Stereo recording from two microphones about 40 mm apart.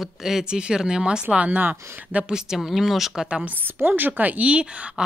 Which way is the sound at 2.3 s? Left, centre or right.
Centre.